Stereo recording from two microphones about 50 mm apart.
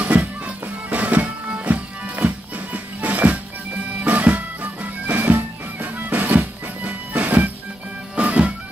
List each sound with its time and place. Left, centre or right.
0.0 s music: right
8.2 s music: right